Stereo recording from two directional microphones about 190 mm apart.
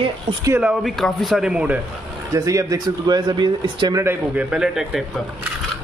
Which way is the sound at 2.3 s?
15° right (ahead or behind).